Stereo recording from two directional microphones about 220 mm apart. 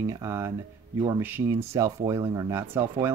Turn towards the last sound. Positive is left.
turn(degrees=-10)  # may be behind; listen again after turning